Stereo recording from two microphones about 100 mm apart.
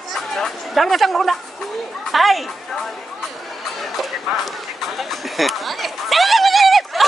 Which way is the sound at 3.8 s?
Centre (ahead or behind).